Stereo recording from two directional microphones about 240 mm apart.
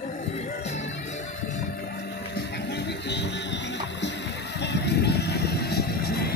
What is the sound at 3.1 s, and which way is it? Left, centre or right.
Music, left.